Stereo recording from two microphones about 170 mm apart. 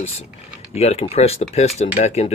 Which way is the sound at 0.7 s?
35° left (ahead or behind).